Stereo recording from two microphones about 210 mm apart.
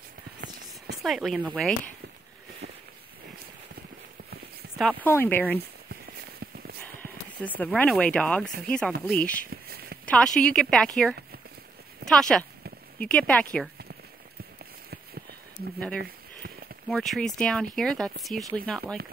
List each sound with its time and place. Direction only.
1.0 s speech: centre (ahead or behind)
4.7 s speech: 5° left (ahead or behind)
7.0 s speech: 10° left (ahead or behind)
9.5 s a sound: 45° right (ahead or behind)
10.0 s speech: 5° left (ahead or behind)
16.8 s speech: centre (ahead or behind)